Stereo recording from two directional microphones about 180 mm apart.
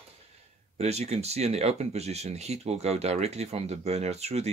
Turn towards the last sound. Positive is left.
turn(degrees=-35)  # may be behind; listen again after turning